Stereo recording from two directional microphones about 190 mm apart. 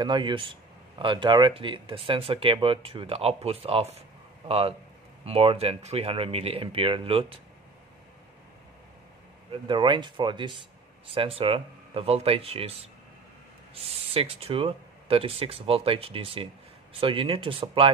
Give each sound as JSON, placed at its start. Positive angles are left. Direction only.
{"t": 0.0, "sound": "speech", "side_deg": -25}
{"t": 9.5, "sound": "speech", "side_deg": -25}